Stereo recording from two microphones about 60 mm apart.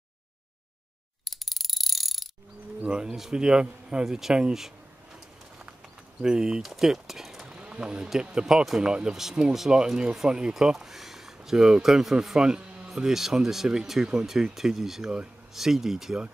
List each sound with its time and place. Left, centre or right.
1.2 s mechanisms: centre
2.8 s speech: centre
6.2 s speech: centre
7.4 s a sound: centre
8.1 s speech: centre